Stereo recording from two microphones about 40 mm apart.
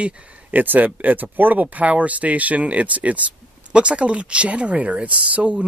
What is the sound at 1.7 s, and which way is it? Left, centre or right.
Speech, right.